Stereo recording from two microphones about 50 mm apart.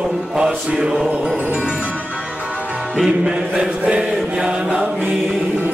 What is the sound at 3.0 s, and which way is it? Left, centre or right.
Music, centre.